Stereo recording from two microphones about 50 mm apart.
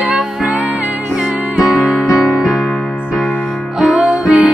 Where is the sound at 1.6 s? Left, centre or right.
Centre.